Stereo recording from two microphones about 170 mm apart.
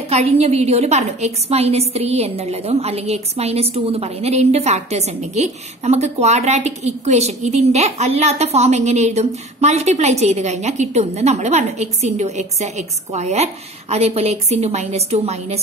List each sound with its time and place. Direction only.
0.1 s a woman's voice: 40° right (ahead or behind)